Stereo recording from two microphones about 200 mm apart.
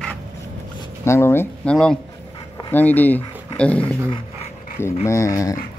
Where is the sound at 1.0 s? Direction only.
15° left (ahead or behind).